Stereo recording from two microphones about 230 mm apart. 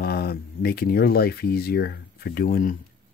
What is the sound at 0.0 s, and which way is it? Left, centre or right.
Speech, left.